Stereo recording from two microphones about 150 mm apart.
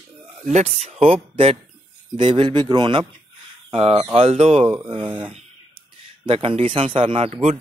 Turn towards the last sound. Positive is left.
turn(degrees=-40)  # may be behind; listen again after turning